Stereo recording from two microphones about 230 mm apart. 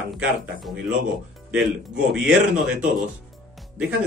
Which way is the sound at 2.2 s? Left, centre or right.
Right.